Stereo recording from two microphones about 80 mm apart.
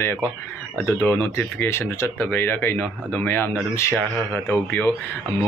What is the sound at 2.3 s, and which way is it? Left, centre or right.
Speech, left.